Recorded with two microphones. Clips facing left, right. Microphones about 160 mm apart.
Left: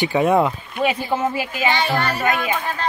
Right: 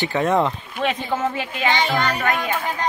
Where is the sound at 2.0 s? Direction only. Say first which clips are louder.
Even; 15° right (ahead or behind).